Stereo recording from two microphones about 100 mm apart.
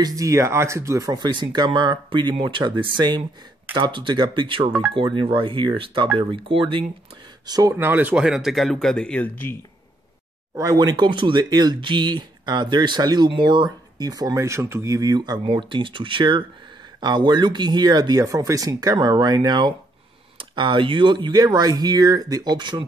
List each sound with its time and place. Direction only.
0.0 s speech: 35° right (ahead or behind)
1.2 s speech: 50° right (ahead or behind)
7.4 s speech: 40° right (ahead or behind)
7.7 s speech: 20° right (ahead or behind); by 9.6 s 15° left (ahead or behind)
10.5 s speech: 40° right (ahead or behind)